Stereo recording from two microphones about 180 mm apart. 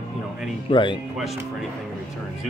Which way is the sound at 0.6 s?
25° left (ahead or behind).